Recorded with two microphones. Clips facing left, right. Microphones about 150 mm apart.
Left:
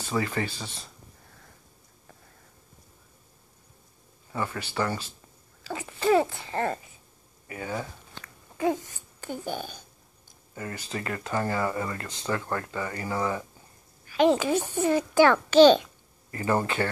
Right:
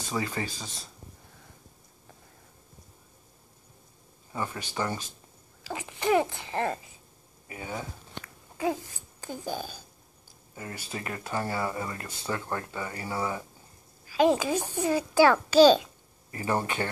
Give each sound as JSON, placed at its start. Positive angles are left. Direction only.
{"t": 0.1, "sound": "speech", "side_deg": -15}
{"t": 4.3, "sound": "speech", "side_deg": -15}
{"t": 7.4, "sound": "a sound", "side_deg": -10}
{"t": 10.5, "sound": "speech", "side_deg": -10}